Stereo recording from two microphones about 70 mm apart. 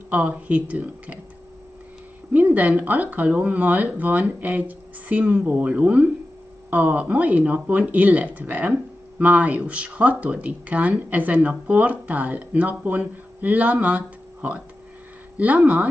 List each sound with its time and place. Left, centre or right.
0.1 s speech: right
2.3 s speech: right